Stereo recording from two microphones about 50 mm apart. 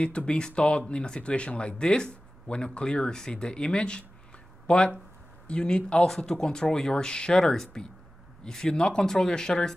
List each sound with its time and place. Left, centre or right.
0.0 s speech: left
6.0 s speech: centre